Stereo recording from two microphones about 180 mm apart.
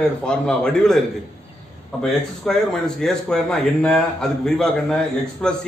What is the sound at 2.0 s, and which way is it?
A man's voice, centre (ahead or behind).